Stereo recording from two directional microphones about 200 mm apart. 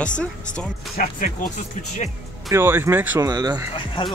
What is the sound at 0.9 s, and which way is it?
Speech, 45° left (ahead or behind).